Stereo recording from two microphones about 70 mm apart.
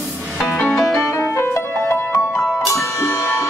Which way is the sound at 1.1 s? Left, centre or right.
Left.